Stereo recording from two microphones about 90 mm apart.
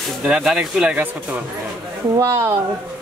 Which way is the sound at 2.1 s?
40° right (ahead or behind).